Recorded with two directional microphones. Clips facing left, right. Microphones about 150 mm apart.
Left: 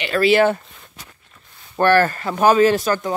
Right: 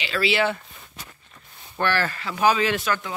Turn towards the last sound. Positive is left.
turn(degrees=40)  # may be behind; listen again after turning